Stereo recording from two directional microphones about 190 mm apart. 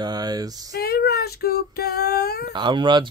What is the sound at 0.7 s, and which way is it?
Female singing, 55° left (ahead or behind).